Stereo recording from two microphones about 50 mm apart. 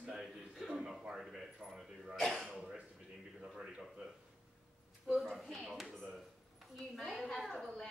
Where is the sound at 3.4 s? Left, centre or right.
Centre.